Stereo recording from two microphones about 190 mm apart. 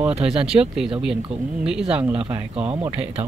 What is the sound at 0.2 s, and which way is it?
Speech, 5° right (ahead or behind).